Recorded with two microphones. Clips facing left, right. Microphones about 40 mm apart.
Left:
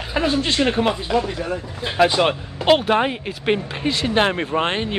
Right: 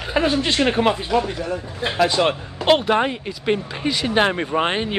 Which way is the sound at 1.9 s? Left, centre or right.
Centre.